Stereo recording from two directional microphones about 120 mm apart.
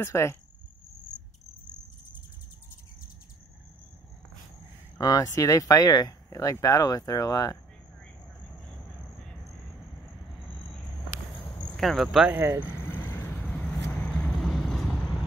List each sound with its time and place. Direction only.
0.0 s speech: 20° left (ahead or behind)
4.9 s speech: 30° left (ahead or behind)
11.6 s speech: 5° left (ahead or behind)
12.3 s speech: 15° right (ahead or behind)
12.8 s vehicle: 20° left (ahead or behind)